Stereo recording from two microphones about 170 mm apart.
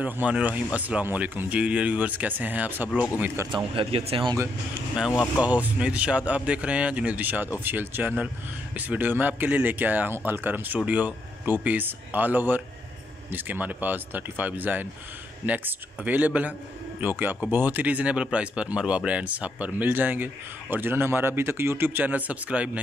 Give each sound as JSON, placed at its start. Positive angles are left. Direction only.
{"t": 0.0, "sound": "speech", "side_deg": -10}
{"t": 3.5, "sound": "speech", "side_deg": -35}
{"t": 5.4, "sound": "speech", "side_deg": -10}